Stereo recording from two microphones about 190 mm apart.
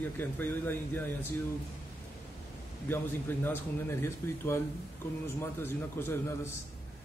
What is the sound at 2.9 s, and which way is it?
A man's voice, 10° left (ahead or behind).